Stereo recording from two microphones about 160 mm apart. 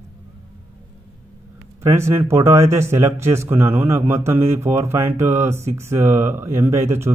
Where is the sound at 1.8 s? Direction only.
15° right (ahead or behind).